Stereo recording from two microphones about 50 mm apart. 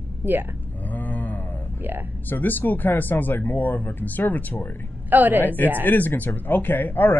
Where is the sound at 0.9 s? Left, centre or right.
Left.